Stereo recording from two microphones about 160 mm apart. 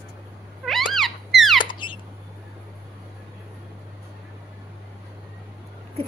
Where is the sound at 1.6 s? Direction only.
30° left (ahead or behind).